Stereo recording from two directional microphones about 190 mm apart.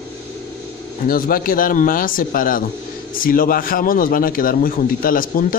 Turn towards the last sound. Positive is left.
turn(degrees=50)  # may be behind; listen again after turning